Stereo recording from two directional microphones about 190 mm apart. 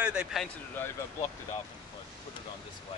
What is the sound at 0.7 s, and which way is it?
Speech, 10° left (ahead or behind).